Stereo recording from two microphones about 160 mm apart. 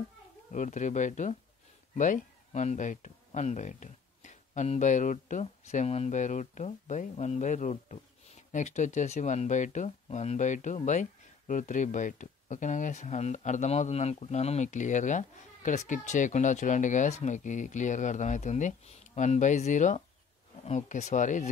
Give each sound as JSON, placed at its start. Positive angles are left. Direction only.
{"t": 0.5, "sound": "speech", "side_deg": 50}